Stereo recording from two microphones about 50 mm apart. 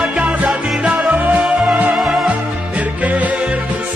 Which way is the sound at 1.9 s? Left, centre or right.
Centre.